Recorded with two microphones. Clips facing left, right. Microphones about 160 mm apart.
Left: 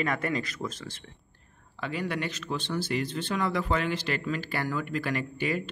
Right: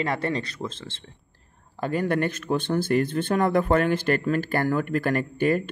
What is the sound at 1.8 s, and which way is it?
Speech, 50° right (ahead or behind).